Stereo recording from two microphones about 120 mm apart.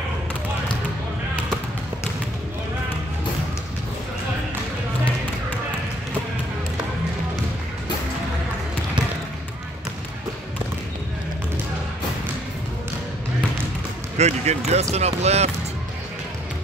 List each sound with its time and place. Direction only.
14.1 s speech: 65° right (ahead or behind)